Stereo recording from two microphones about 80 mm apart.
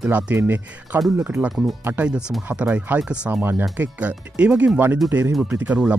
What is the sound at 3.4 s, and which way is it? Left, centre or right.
Speech, right.